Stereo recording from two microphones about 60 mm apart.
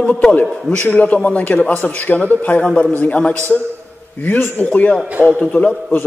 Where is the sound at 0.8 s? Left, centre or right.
Left.